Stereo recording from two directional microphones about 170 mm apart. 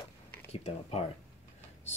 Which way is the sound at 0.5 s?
40° left (ahead or behind).